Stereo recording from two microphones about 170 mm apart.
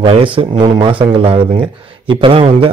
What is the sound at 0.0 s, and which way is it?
A man's voice, 30° right (ahead or behind).